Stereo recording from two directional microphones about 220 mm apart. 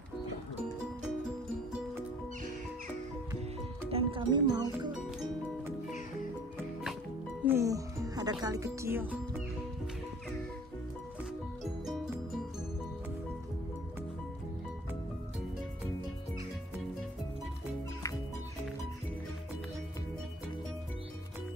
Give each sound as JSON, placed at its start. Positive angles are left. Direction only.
{"t": 3.9, "sound": "speech", "side_deg": -20}
{"t": 7.4, "sound": "speech", "side_deg": -15}
{"t": 11.6, "sound": "music", "side_deg": 0}